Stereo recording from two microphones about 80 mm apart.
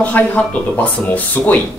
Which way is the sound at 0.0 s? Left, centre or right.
Centre.